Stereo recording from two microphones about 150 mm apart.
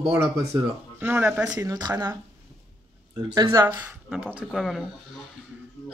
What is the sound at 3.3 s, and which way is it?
Speech, 25° right (ahead or behind).